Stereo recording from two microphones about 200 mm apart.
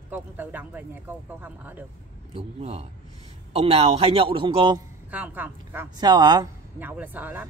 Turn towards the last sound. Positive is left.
turn(degrees=-10)  # may be behind; listen again after turning